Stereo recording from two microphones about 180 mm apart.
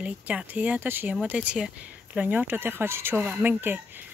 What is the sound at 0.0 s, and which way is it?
Speech, 5° right (ahead or behind).